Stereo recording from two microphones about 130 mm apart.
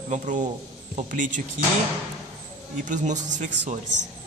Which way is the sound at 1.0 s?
85° right.